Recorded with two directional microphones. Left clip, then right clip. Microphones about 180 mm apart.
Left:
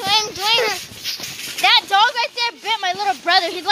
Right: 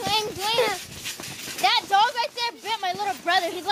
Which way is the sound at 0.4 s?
20° left (ahead or behind).